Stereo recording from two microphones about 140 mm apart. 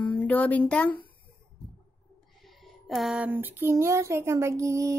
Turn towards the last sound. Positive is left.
turn(degrees=-20)  # may be behind; listen again after turning